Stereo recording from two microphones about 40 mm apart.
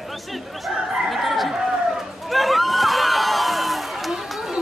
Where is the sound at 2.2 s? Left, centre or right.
Centre.